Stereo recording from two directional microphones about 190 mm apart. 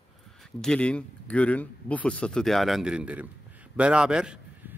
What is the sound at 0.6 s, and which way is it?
Speech, 5° left (ahead or behind).